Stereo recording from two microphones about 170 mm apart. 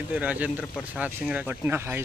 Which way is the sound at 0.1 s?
10° right (ahead or behind).